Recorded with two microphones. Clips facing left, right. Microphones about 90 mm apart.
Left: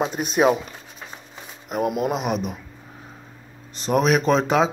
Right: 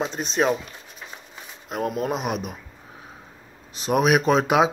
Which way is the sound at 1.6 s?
10° left (ahead or behind).